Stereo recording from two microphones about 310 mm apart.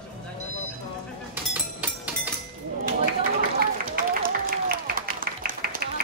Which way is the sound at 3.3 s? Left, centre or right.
Right.